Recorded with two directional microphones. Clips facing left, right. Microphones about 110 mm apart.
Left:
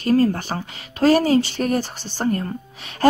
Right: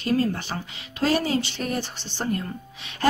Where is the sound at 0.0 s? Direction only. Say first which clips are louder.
Left 6 dB; 40° left (ahead or behind).